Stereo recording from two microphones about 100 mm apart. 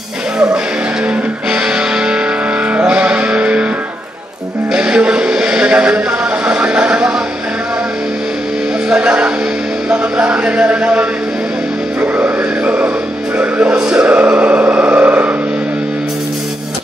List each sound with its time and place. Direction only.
1.0 s music: 10° right (ahead or behind)
4.7 s a sound: 10° right (ahead or behind)
8.8 s music: 10° right (ahead or behind)
9.8 s speech: 10° right (ahead or behind)
12.0 s a sound: 15° right (ahead or behind)
13.4 s chant: 10° right (ahead or behind)